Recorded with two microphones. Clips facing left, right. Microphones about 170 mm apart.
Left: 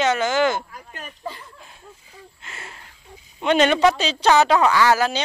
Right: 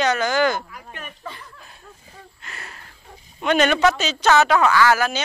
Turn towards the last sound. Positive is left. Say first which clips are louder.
# even
turn(degrees=25)  # may be behind; listen again after turning